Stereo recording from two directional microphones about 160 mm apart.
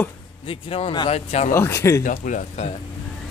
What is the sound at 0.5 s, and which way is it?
Speech, 35° left (ahead or behind).